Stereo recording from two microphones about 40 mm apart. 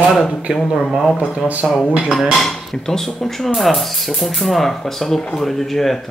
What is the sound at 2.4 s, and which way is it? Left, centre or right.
Speech, centre.